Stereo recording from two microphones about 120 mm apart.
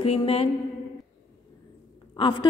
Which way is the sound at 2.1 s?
45° left (ahead or behind).